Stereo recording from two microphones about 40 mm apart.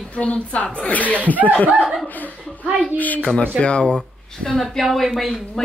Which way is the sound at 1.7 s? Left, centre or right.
Centre.